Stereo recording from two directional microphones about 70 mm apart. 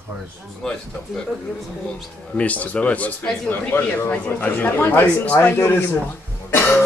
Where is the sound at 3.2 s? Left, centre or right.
Centre.